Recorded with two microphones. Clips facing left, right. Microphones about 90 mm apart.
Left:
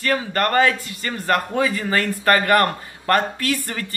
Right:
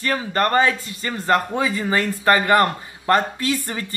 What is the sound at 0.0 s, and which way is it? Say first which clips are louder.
Speech: even; 20° right (ahead or behind).